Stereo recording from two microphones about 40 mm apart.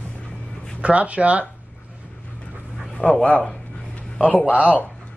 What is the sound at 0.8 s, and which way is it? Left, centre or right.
Speech, right.